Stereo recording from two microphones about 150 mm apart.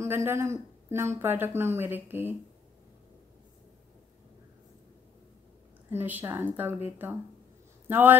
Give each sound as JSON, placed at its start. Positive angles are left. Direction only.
{"t": 0.0, "sound": "speech", "side_deg": -15}
{"t": 5.9, "sound": "speech", "side_deg": -15}